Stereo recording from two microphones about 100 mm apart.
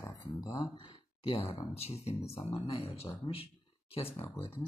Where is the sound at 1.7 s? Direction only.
90° left.